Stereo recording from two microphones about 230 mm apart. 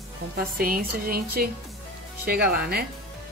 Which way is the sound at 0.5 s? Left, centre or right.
Right.